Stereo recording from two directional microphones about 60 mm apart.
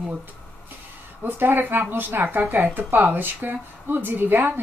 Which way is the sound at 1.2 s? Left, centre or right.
Right.